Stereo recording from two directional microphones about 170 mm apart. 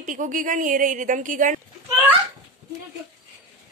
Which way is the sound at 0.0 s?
50° right (ahead or behind).